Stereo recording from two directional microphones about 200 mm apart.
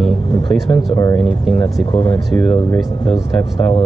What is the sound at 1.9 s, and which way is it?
Speech, 25° left (ahead or behind).